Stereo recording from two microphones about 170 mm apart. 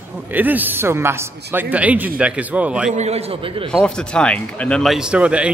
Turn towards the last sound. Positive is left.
turn(degrees=-5)  # may be behind; listen again after turning